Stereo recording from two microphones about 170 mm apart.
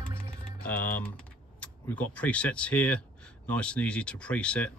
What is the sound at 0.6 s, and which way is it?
Speech, 10° left (ahead or behind).